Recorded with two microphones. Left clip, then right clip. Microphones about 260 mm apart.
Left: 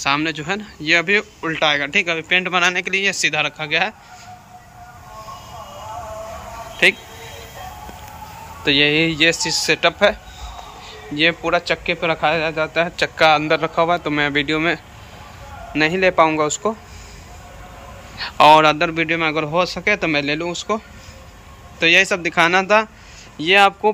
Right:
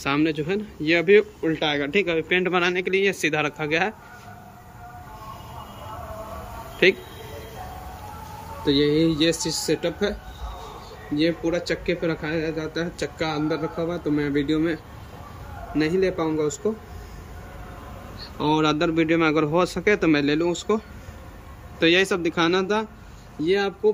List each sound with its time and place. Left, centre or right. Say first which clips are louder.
0.0 s speech: left 4 dB; centre
6.8 s speech: left 4 dB; centre
8.6 s speech: left 5 dB; centre
11.1 s speech: left 6 dB; centre
13.5 s a man's voice: left 10 dB; left
16.1 s a man's voice: left 10 dB; left
18.1 s a man's voice: left 16 dB; left
18.5 s speech: left 6 dB; centre